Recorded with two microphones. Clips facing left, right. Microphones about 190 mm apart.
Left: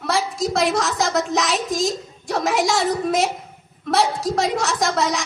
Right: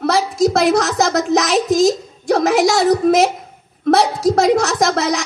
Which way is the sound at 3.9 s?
45° right (ahead or behind).